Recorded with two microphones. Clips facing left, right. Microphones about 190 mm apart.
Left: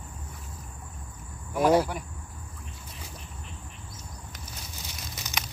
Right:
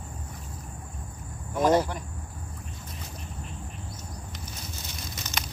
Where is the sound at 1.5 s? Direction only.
10° left (ahead or behind).